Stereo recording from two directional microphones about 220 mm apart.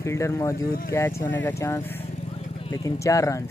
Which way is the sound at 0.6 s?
40° left (ahead or behind).